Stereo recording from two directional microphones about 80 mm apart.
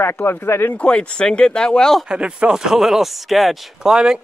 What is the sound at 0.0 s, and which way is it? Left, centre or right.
Speech, left.